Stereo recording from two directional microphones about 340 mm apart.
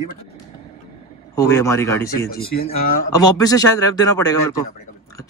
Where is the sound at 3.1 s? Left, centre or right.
Centre.